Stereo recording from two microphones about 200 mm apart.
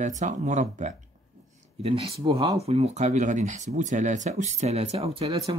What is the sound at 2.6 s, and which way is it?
Speech, 30° right (ahead or behind).